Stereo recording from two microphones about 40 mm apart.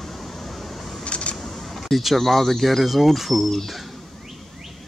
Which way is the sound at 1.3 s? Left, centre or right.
Centre.